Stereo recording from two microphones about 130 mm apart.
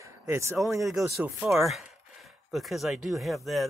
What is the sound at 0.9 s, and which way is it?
Speech, 25° right (ahead or behind).